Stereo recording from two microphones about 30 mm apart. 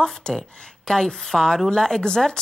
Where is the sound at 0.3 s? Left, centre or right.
Left.